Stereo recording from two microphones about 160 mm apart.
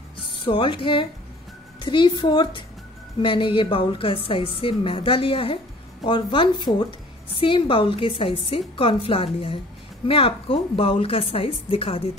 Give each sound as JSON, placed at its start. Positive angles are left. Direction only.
{"t": 0.5, "sound": "a woman's voice", "side_deg": 30}